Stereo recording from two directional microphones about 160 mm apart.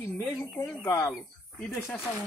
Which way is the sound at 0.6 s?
20° left (ahead or behind).